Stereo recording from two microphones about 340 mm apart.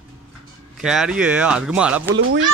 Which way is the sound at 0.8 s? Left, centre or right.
Centre.